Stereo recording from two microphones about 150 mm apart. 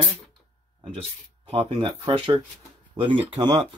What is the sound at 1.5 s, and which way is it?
Speech, 40° right (ahead or behind).